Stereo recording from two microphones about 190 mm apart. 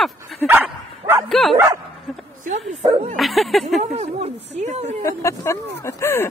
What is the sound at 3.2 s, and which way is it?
Speech, centre (ahead or behind).